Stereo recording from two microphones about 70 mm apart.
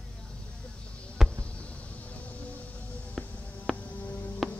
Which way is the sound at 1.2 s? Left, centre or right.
Centre.